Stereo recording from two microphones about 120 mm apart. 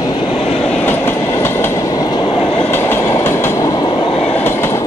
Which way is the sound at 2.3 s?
50° left (ahead or behind).